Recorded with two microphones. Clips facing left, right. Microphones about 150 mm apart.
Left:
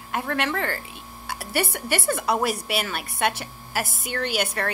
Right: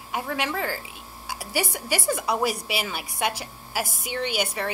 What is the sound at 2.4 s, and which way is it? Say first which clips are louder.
Speech: left 1 dB; 60° left (ahead or behind).